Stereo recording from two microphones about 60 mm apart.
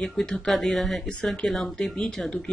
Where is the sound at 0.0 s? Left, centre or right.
Centre.